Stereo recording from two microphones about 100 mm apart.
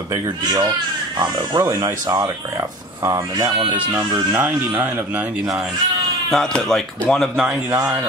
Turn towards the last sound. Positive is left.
turn(degrees=5)  # may be behind; listen again after turning